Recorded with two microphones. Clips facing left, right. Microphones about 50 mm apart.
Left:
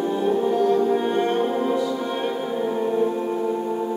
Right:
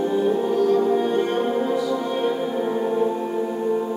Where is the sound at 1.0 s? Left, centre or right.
Left.